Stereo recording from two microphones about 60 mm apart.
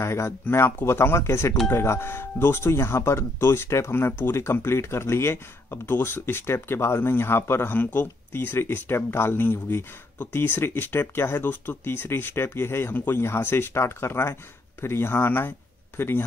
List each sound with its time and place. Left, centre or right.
0.0 s speech: left
7.7 s speech: left